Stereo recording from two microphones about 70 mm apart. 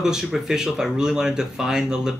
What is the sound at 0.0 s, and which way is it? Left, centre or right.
Speech, centre.